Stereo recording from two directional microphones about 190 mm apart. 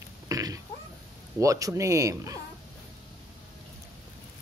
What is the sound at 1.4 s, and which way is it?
Speech, 15° right (ahead or behind).